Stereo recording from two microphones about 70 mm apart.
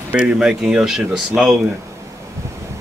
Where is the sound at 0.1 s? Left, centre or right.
Centre.